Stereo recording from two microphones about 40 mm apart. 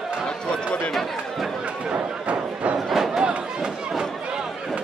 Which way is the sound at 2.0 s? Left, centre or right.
Right.